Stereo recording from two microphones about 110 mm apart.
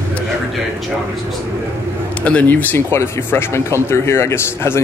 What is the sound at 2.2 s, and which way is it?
Speech, 15° left (ahead or behind).